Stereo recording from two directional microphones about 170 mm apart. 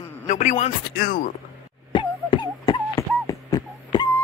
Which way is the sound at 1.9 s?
25° left (ahead or behind).